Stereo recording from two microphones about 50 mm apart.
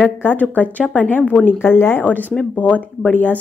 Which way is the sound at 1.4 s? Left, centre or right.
Left.